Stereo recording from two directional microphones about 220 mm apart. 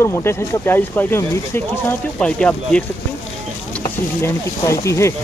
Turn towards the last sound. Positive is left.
turn(degrees=15)  # may be behind; listen again after turning